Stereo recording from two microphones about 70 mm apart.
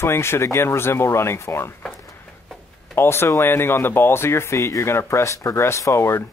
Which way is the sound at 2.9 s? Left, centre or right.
Left.